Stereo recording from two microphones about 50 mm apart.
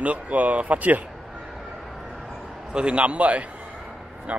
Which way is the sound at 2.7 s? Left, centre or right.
Right.